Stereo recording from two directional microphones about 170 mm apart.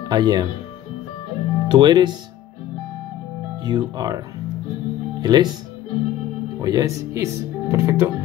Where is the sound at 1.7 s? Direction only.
25° right (ahead or behind).